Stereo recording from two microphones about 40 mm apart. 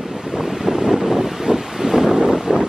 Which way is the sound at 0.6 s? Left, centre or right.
Centre.